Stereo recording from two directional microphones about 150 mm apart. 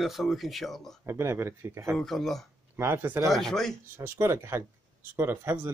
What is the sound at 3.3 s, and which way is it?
Speech, 5° left (ahead or behind).